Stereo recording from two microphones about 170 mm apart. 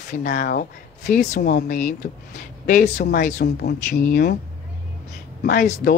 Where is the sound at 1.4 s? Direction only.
55° left (ahead or behind).